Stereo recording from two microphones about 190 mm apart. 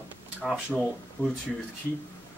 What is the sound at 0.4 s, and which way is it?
Speech, centre (ahead or behind).